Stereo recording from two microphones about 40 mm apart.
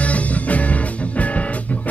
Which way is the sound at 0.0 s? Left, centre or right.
Left.